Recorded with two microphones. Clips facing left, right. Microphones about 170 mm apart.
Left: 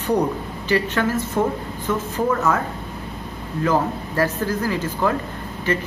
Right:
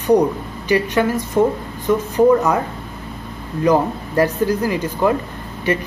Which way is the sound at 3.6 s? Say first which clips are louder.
Right 5 dB; 15° right (ahead or behind).